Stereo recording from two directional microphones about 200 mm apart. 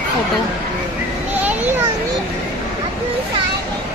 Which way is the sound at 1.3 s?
10° right (ahead or behind).